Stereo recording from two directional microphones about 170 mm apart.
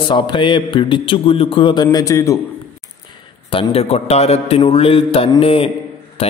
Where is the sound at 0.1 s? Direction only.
30° left (ahead or behind).